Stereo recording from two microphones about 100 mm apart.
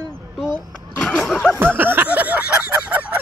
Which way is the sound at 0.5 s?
10° left (ahead or behind).